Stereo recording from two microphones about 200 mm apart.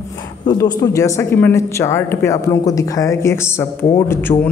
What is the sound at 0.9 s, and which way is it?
A man's voice, 15° left (ahead or behind).